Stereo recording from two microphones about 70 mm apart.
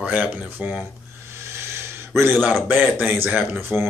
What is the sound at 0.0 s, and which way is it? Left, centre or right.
Speech, right.